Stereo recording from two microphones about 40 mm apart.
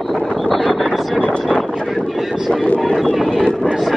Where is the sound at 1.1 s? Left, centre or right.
Left.